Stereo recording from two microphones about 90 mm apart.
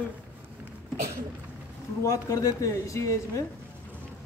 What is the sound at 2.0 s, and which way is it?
Speech, 40° left (ahead or behind).